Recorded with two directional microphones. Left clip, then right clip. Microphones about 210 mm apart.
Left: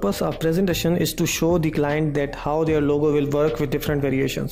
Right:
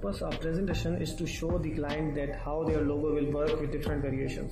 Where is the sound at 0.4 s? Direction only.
50° left (ahead or behind).